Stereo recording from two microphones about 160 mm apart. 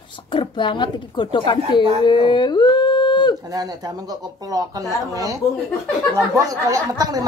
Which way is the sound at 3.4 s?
25° right (ahead or behind).